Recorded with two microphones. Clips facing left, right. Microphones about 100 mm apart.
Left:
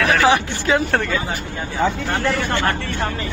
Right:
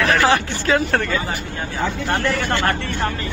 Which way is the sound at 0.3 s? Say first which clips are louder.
Left 1 dB; 20° left (ahead or behind).